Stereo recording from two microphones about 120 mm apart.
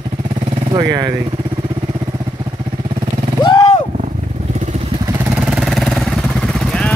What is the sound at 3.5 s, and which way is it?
Vehicle, 40° left (ahead or behind).